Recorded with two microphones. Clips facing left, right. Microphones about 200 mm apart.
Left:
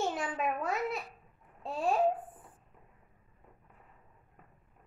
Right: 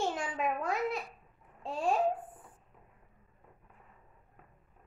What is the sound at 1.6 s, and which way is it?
Speech, centre (ahead or behind).